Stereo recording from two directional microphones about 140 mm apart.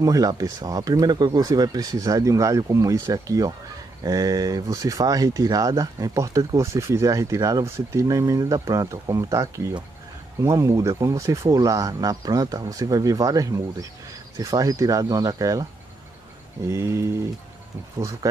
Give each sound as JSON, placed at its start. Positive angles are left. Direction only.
{"t": 0.0, "sound": "speech", "side_deg": -25}
{"t": 16.6, "sound": "speech", "side_deg": -20}